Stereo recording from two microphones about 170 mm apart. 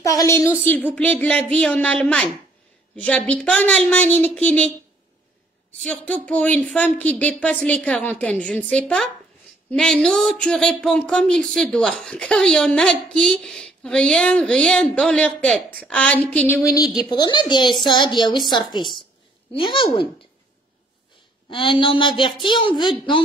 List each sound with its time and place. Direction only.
0.0 s a woman's voice: 20° left (ahead or behind)
0.9 s a woman's voice: 5° left (ahead or behind); by 19.9 s 30° left (ahead or behind)
21.5 s a woman's voice: 30° left (ahead or behind)